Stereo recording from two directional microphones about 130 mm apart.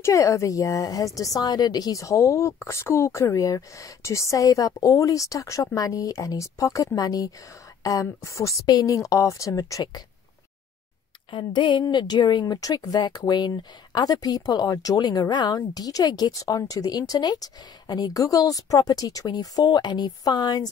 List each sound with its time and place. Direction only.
0.0 s a woman's voice: 25° left (ahead or behind)
11.3 s speech: 35° left (ahead or behind)